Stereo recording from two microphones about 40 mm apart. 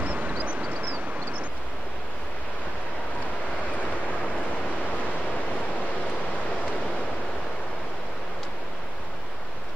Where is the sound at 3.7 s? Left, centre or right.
Left.